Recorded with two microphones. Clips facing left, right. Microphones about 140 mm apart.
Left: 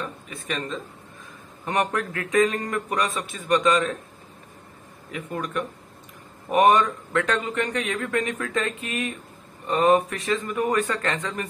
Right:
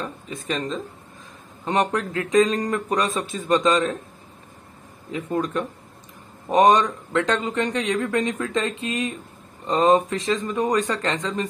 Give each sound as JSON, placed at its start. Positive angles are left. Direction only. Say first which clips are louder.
{"t": 0.0, "sound": "speech", "louder": "right 3 dB", "side_deg": -35}
{"t": 1.9, "sound": "speech", "louder": "right 3 dB", "side_deg": -20}
{"t": 2.5, "sound": "speech", "louder": "right 4 dB", "side_deg": -30}
{"t": 5.3, "sound": "speech", "louder": "right 4 dB", "side_deg": -30}